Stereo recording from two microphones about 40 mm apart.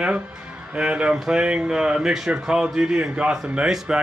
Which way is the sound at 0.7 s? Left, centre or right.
Right.